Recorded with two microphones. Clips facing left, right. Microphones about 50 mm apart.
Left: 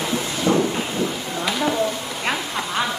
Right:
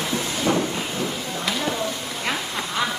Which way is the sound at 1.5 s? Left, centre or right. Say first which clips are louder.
Left 5 dB; centre.